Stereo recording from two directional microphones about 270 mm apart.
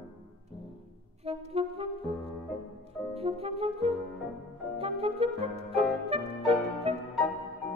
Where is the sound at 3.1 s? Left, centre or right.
Right.